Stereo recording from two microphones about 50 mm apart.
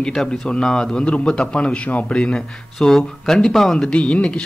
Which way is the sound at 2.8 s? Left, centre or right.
Centre.